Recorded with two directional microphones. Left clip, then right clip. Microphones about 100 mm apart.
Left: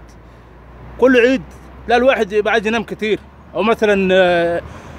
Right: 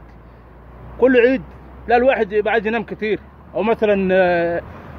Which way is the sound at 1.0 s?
35° left (ahead or behind).